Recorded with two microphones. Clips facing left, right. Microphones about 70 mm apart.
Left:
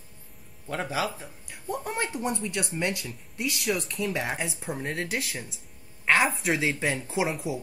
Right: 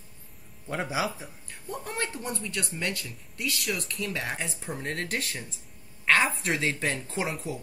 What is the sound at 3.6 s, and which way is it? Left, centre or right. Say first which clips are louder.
Speech: left 4 dB; centre.